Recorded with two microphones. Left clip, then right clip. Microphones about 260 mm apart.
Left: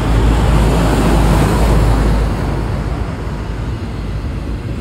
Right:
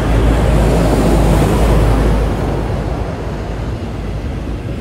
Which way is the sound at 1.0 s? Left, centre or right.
Left.